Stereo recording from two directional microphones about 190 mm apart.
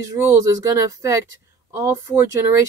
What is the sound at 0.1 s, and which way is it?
Speech, 15° right (ahead or behind).